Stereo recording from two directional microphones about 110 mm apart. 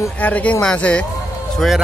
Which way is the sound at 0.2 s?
15° left (ahead or behind).